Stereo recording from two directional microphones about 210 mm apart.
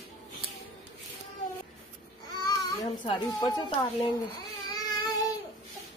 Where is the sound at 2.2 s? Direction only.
20° left (ahead or behind).